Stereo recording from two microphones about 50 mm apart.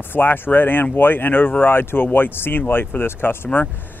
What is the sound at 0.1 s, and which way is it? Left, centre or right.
Speech, left.